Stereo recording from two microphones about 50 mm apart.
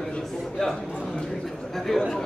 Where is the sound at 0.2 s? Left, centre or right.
Centre.